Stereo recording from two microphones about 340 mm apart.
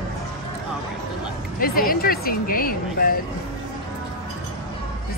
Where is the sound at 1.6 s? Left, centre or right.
Left.